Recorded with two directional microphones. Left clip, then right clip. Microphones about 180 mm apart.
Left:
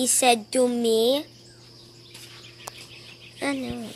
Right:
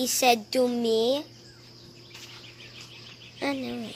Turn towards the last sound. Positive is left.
turn(degrees=10)  # may be behind; listen again after turning